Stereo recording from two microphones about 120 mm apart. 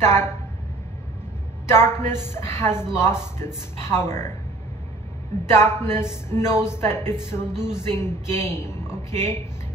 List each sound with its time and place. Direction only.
0.0 s a woman's voice: 20° left (ahead or behind)
1.7 s a woman's voice: 20° left (ahead or behind)
5.5 s a woman's voice: 20° left (ahead or behind)